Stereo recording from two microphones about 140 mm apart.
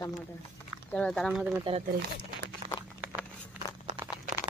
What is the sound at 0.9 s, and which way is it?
Speech, 10° left (ahead or behind).